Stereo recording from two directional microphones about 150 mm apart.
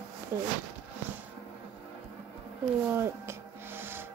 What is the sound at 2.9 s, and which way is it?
Music, 20° right (ahead or behind).